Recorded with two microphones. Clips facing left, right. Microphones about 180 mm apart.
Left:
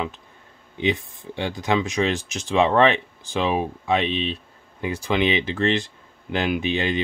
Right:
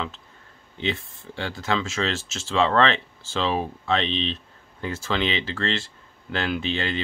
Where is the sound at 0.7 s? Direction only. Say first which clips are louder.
Left 5 dB; 15° left (ahead or behind).